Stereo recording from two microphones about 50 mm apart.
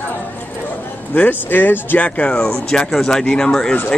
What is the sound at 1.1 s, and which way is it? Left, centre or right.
Speech, left.